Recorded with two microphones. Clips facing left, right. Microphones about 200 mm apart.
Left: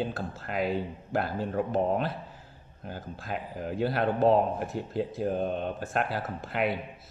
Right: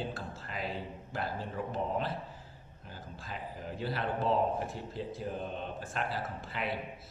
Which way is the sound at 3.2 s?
60° left (ahead or behind).